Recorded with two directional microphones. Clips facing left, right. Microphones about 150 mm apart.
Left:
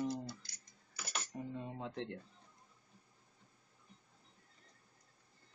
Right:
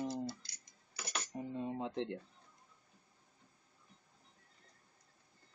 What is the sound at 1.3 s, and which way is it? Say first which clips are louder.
Speech: right 6 dB; 20° right (ahead or behind).